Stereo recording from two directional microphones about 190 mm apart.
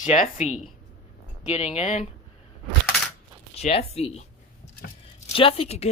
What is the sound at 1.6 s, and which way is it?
Speech, 35° left (ahead or behind).